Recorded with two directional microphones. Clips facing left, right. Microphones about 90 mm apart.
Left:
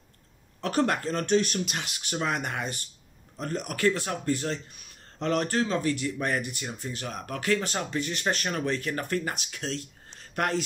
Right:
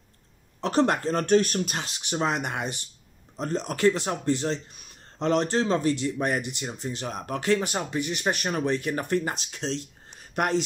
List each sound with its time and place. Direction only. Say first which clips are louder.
0.6 s speech: right 3 dB; 25° right (ahead or behind)
1.1 s speech: right 3 dB; 45° right (ahead or behind)
2.0 s speech: right 3 dB; 25° right (ahead or behind)
10.1 s a sound: right 3 dB; 20° right (ahead or behind)